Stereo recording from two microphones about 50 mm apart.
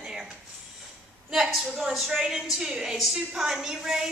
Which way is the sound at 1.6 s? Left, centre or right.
Centre.